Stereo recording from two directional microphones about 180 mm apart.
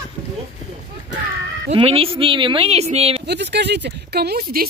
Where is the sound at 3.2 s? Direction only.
70° right (ahead or behind).